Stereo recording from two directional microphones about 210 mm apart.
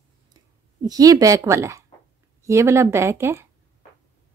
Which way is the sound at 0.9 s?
15° right (ahead or behind).